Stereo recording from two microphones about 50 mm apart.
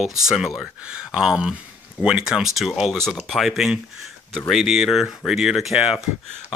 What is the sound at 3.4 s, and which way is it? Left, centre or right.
Speech, centre.